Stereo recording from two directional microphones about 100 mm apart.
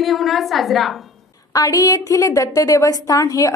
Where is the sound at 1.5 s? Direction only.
35° left (ahead or behind).